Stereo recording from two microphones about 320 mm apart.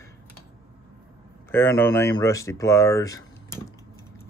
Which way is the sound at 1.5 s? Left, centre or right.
Centre.